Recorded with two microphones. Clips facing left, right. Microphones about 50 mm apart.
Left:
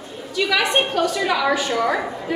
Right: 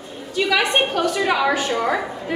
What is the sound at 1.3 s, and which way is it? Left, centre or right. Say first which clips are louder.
Speech: right 1 dB; centre.